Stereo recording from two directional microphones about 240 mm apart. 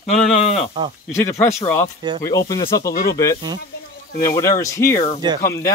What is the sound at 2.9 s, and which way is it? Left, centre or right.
Speech, left.